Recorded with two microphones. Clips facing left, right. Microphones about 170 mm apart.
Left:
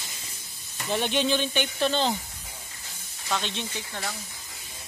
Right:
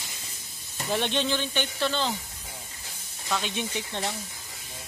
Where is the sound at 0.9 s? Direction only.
5° left (ahead or behind).